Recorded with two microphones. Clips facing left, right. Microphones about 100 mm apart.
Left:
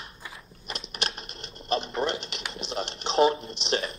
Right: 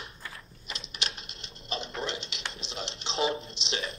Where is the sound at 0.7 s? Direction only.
55° left (ahead or behind).